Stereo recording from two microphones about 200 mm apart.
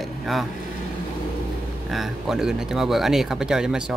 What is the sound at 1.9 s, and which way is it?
Speech, centre (ahead or behind).